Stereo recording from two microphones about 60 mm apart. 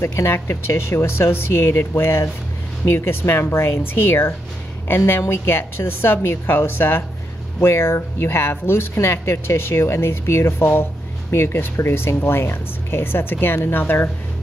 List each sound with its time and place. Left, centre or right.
0.0 s speech: left